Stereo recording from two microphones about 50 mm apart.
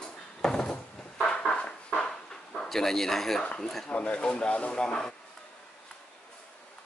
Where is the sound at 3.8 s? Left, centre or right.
Left.